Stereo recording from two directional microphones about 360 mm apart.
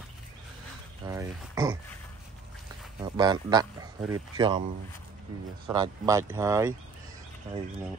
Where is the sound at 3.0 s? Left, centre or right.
Centre.